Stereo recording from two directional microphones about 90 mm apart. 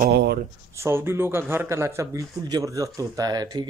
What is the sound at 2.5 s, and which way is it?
Speech, 40° right (ahead or behind).